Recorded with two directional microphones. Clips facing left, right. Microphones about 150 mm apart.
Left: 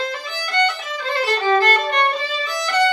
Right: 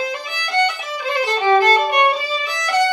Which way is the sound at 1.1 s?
15° right (ahead or behind).